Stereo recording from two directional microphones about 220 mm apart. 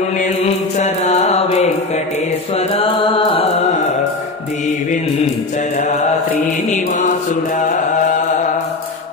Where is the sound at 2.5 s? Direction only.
25° left (ahead or behind).